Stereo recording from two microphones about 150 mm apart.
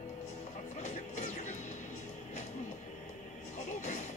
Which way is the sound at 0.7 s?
50° left (ahead or behind).